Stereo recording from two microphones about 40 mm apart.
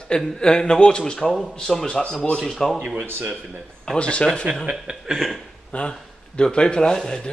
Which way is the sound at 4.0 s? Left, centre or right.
Left.